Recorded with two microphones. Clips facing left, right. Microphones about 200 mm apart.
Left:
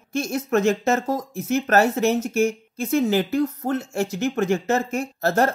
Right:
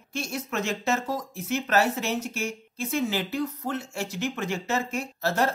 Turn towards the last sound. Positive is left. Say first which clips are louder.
# left 5 dB
turn(degrees=45)  # may be behind; listen again after turning